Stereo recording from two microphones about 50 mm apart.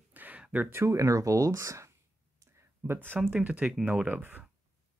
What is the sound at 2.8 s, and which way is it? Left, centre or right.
Speech, right.